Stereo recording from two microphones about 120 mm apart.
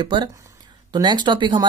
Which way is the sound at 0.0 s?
40° right (ahead or behind).